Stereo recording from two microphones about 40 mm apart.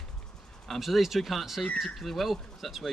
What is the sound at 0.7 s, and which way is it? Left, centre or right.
Speech, centre.